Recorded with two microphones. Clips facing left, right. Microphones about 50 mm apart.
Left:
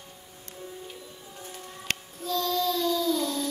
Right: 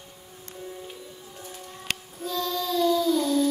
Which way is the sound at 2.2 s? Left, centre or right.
Centre.